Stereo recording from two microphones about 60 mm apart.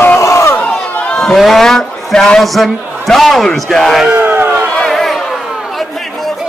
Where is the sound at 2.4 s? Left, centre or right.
Centre.